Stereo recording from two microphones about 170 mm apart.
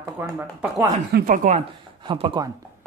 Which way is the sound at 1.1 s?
50° right (ahead or behind).